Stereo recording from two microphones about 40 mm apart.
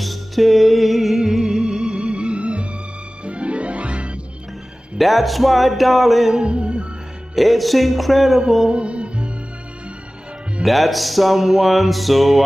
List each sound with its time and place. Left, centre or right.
0.0 s music: centre
1.2 s music: centre; by 4.2 s right
4.9 s music: centre
6.3 s music: right
7.3 s music: centre
8.6 s music: right
10.6 s music: centre